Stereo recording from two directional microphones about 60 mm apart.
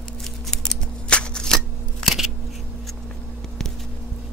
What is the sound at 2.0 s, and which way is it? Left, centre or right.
Scissors, centre.